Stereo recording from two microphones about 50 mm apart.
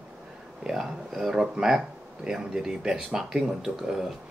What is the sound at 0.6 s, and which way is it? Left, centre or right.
Speech, centre.